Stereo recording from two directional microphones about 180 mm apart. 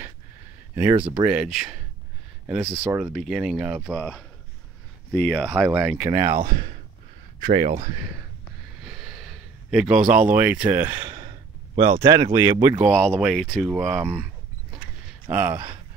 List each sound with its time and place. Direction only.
0.9 s speech: 30° right (ahead or behind)
1.2 s speech: 5° right (ahead or behind)
5.5 s speech: 5° right (ahead or behind)
6.2 s speech: 50° right (ahead or behind)
8.8 s a sound: 5° right (ahead or behind)
10.3 s speech: 10° right (ahead or behind)
11.1 s sigh: 25° right (ahead or behind)
12.0 s speech: 20° right (ahead or behind)
13.1 s speech: centre (ahead or behind)
15.2 s speech: 15° right (ahead or behind)